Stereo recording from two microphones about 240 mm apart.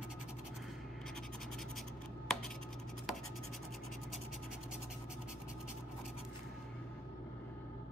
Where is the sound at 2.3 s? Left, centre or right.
Centre.